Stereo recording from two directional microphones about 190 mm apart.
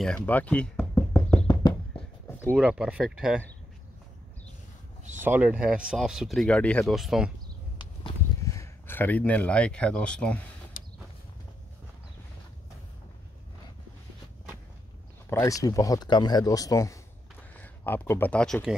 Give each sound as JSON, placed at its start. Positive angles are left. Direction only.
{"t": 0.0, "sound": "music", "side_deg": 5}
{"t": 2.5, "sound": "speech", "side_deg": -5}
{"t": 5.2, "sound": "speech", "side_deg": -10}
{"t": 7.8, "sound": "a sound", "side_deg": 20}
{"t": 15.2, "sound": "speech", "side_deg": 15}